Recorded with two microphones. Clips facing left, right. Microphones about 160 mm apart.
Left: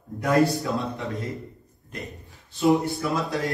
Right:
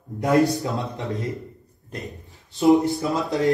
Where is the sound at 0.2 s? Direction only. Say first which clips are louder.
Right 2 dB; 20° right (ahead or behind).